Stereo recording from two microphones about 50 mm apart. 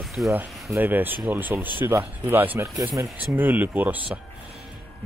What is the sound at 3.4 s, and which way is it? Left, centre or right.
Speech, right.